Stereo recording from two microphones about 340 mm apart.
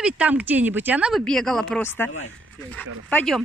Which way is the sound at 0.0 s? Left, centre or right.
Centre.